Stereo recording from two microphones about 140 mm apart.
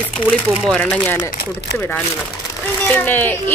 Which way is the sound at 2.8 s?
15° left (ahead or behind).